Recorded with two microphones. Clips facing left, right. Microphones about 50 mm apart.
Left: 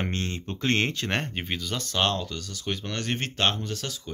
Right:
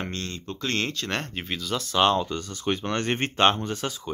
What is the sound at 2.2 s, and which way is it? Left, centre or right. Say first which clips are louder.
Speech: right 5 dB; right.